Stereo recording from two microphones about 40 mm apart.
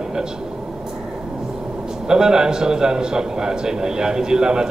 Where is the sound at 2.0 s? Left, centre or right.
Centre.